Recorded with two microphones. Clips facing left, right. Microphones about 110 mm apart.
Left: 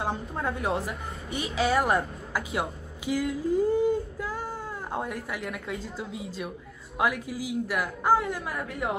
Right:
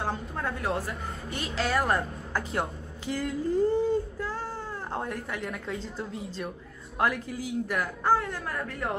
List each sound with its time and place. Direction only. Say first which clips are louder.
0.0 s a woman's voice: left 2 dB; 15° left (ahead or behind)
1.8 s a woman's voice: left 2 dB; centre (ahead or behind)